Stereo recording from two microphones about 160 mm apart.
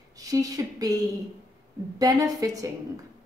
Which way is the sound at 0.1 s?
20° right (ahead or behind).